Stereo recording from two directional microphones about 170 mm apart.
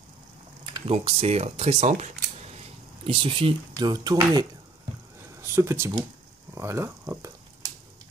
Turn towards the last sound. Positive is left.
turn(degrees=-20)  # may be behind; listen again after turning